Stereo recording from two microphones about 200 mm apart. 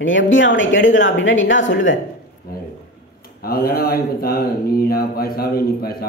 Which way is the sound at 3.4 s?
50° left (ahead or behind).